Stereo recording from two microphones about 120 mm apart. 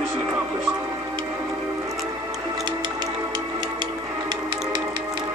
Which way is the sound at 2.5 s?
40° right (ahead or behind).